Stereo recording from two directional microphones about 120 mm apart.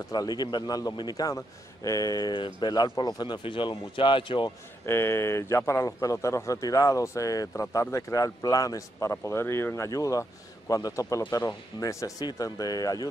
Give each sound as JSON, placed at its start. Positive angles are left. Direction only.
{"t": 0.1, "sound": "a man's voice", "side_deg": 35}
{"t": 4.8, "sound": "a man's voice", "side_deg": 20}